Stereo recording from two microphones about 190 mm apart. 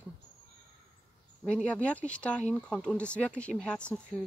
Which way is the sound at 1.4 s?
5° left (ahead or behind).